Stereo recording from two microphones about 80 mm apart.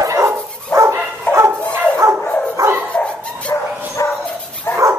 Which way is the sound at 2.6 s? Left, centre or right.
Right.